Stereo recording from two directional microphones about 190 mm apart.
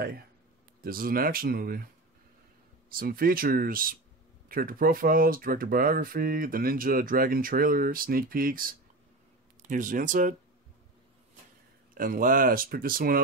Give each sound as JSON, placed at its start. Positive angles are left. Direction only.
{"t": 0.8, "sound": "speech", "side_deg": -50}
{"t": 2.9, "sound": "speech", "side_deg": -50}
{"t": 11.9, "sound": "speech", "side_deg": -50}